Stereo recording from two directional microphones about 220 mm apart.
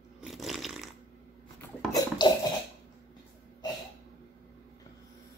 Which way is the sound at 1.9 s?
15° left (ahead or behind).